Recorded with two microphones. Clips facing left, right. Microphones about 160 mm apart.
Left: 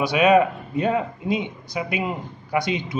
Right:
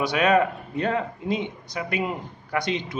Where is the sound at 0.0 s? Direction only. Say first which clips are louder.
Left 4 dB; 10° left (ahead or behind).